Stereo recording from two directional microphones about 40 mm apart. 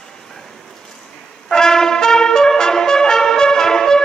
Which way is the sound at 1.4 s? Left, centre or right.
Centre.